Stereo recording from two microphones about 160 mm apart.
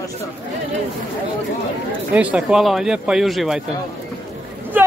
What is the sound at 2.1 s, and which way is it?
Speech, 5° right (ahead or behind).